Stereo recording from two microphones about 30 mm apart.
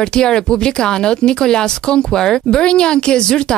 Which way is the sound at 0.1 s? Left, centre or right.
Left.